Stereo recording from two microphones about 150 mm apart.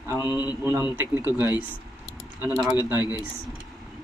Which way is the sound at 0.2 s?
25° left (ahead or behind).